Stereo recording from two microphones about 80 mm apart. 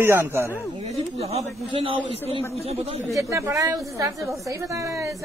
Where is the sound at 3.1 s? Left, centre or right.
Right.